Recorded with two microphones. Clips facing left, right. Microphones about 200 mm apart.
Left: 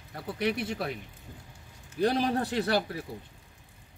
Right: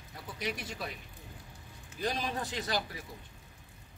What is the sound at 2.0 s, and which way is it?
Speech, 65° left (ahead or behind).